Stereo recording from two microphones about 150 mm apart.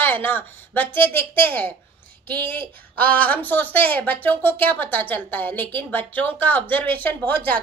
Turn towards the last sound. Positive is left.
turn(degrees=10)  # may be behind; listen again after turning